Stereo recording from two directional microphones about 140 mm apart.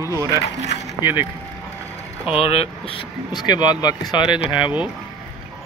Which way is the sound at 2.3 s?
45° left (ahead or behind).